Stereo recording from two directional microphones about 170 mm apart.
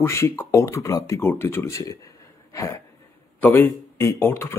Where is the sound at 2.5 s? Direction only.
20° left (ahead or behind).